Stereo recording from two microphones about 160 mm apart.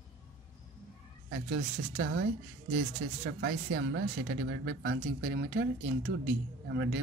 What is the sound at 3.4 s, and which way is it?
Speech, 80° right.